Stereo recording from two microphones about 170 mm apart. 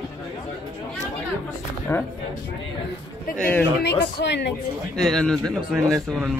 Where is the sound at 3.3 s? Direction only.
5° left (ahead or behind).